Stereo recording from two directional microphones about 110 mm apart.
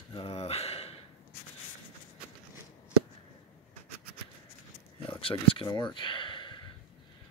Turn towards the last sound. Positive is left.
turn(degrees=45)  # may be behind; listen again after turning